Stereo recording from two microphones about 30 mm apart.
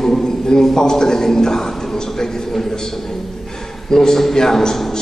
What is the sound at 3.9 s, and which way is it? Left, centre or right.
Speech, centre.